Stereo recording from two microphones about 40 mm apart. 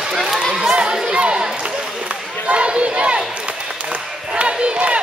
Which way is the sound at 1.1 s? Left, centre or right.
Right.